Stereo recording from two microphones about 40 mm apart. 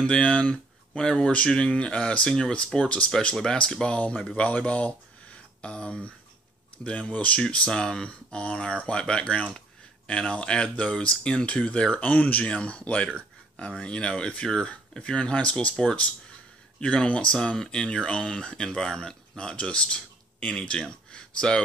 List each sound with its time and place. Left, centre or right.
0.0 s speech: left
7.5 s speech: left
12.0 s speech: left
12.4 s speech: left
15.7 s speech: centre
16.8 s speech: left
17.4 s speech: centre
20.8 s a sound: left